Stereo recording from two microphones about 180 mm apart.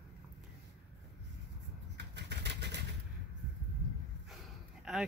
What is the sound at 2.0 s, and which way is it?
Vehicle, 70° right (ahead or behind).